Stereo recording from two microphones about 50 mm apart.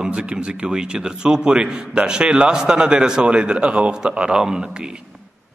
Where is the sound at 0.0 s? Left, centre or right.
Centre.